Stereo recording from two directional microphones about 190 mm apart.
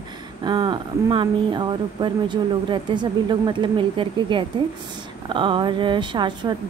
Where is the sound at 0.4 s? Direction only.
20° right (ahead or behind).